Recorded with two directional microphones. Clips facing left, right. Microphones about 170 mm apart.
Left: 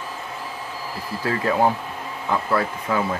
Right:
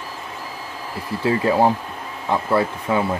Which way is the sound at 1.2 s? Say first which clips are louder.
Right 3 dB; 25° right (ahead or behind).